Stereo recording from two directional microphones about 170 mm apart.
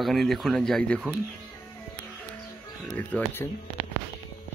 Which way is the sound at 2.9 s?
10° left (ahead or behind).